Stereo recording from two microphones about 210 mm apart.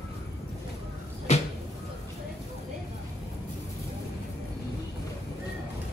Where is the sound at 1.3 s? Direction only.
30° left (ahead or behind).